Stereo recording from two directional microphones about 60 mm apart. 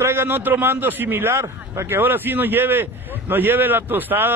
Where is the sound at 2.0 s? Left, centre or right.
Right.